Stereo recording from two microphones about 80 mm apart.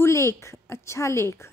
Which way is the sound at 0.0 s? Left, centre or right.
Left.